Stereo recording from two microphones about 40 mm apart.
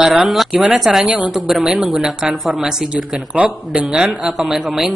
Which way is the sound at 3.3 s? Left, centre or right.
Right.